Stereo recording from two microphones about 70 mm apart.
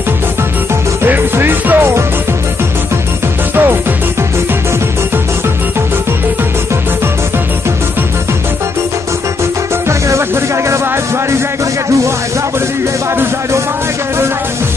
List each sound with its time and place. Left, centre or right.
1.0 s music: right
9.8 s music: right